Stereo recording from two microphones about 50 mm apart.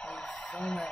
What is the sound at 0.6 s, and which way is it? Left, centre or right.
Speech, centre.